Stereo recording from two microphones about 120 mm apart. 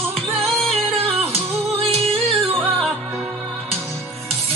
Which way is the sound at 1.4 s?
55° right (ahead or behind).